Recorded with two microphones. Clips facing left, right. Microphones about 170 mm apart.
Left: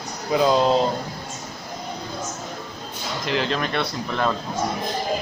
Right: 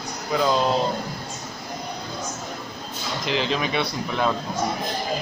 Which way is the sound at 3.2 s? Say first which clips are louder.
Even; centre (ahead or behind).